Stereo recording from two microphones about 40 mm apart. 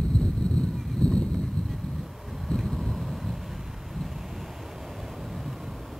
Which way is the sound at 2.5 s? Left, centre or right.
Centre.